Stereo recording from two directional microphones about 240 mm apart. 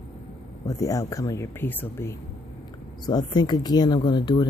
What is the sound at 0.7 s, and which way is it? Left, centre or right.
Speech, centre.